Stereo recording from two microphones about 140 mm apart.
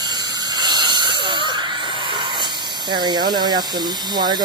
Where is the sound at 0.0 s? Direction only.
30° right (ahead or behind).